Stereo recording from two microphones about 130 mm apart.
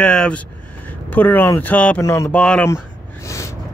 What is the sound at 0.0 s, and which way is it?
Speech, 5° left (ahead or behind).